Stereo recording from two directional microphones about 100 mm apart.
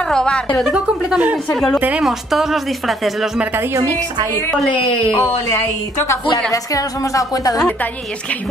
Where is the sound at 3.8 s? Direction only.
35° right (ahead or behind).